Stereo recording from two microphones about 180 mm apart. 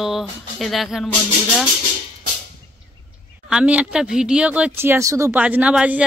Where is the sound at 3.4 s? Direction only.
5° right (ahead or behind).